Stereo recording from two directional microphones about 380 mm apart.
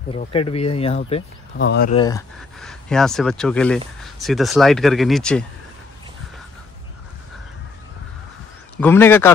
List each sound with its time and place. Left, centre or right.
0.1 s speech: centre
2.0 s speech: centre
8.7 s speech: centre